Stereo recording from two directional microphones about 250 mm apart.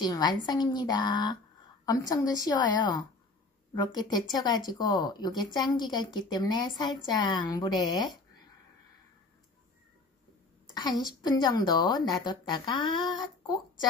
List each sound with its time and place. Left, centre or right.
0.0 s speech: centre
10.7 s a woman's voice: centre